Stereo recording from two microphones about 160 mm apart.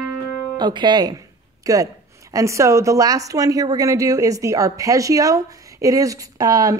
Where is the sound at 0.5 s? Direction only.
30° right (ahead or behind).